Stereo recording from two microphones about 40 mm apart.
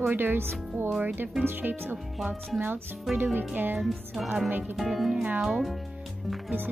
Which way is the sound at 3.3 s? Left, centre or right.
Right.